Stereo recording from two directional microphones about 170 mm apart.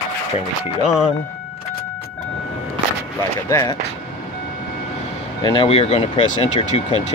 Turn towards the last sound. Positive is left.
turn(degrees=40)  # may be behind; listen again after turning